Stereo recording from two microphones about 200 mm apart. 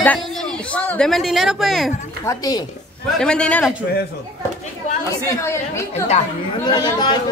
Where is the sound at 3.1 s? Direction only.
5° left (ahead or behind).